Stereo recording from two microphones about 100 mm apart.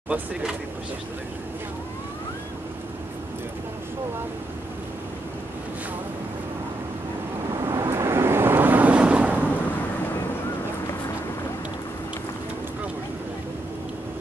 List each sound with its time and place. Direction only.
0.1 s speech: 10° right (ahead or behind)
7.6 s waves: 30° right (ahead or behind); by 9.4 s 15° right (ahead or behind)